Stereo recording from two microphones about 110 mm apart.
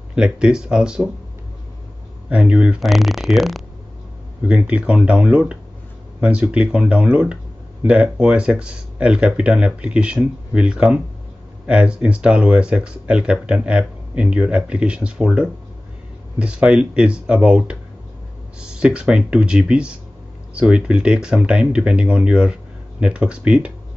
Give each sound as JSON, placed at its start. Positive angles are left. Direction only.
{"t": 0.1, "sound": "speech", "side_deg": -10}
{"t": 2.2, "sound": "speech", "side_deg": -10}
{"t": 4.5, "sound": "speech", "side_deg": -10}